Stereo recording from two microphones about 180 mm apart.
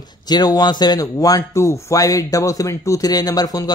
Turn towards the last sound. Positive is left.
turn(degrees=20)  # may be behind; listen again after turning